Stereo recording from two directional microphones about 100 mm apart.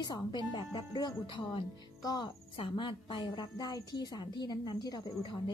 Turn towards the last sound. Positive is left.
turn(degrees=45)  # may be behind; listen again after turning